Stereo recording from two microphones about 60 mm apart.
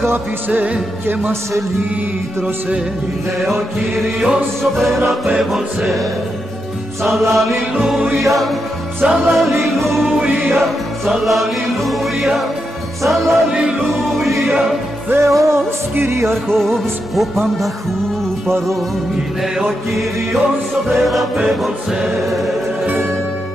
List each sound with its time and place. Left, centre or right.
0.5 s music: right
3.3 s music: centre
15.1 s music: right
16.4 s music: centre
20.9 s music: centre